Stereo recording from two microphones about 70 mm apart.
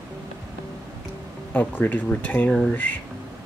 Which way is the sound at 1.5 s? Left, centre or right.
Left.